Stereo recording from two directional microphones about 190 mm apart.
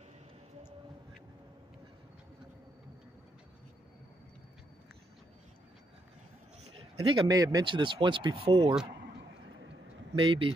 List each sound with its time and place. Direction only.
6.6 s speech: 25° right (ahead or behind)
10.1 s speech: 25° right (ahead or behind)